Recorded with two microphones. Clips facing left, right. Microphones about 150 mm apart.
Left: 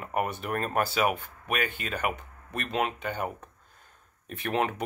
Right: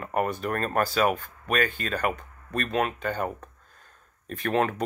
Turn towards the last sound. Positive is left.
turn(degrees=15)  # may be behind; listen again after turning